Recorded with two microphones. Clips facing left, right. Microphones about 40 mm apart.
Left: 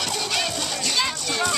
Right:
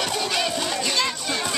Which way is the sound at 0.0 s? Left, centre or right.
Centre.